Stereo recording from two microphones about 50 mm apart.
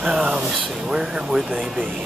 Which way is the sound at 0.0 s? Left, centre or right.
Centre.